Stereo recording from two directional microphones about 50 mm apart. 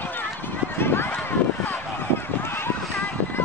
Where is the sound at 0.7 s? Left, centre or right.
Left.